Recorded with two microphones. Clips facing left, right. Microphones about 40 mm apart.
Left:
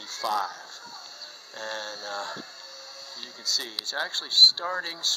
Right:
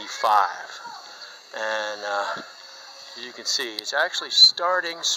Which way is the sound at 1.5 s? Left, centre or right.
Right.